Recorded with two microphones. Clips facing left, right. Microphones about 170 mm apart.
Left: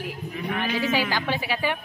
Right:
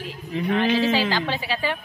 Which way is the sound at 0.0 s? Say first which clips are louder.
Right 4 dB; 15° left (ahead or behind).